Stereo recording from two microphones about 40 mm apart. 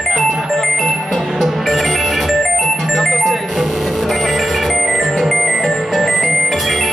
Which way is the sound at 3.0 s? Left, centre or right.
Centre.